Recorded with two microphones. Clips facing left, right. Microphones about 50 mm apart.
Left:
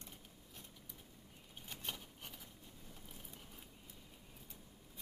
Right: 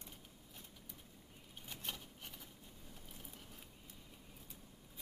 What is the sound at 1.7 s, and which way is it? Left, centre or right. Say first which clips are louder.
Rub: even; centre.